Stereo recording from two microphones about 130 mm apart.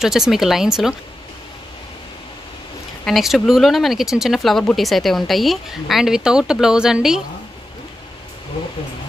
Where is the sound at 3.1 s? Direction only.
Centre (ahead or behind).